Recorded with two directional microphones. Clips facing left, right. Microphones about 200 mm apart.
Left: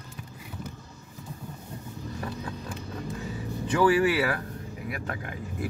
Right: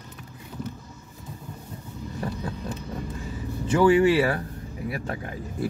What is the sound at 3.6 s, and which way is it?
Speech, 25° right (ahead or behind).